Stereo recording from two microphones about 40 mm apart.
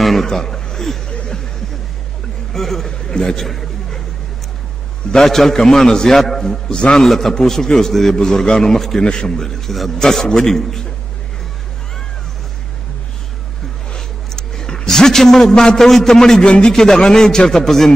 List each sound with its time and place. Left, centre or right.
0.0 s chuckle: centre
1.0 s a sound: left
2.5 s a sound: centre
5.1 s a man's voice: centre
6.5 s a man's voice: left
7.1 s a man's voice: centre
9.0 s a man's voice: centre
13.9 s a sound: centre
16.4 s a man's voice: left
16.7 s a man's voice: centre